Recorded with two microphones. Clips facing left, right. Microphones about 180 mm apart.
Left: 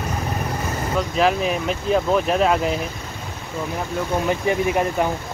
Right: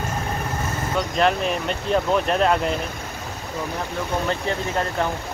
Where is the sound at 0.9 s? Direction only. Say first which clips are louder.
Left 1 dB; 5° left (ahead or behind).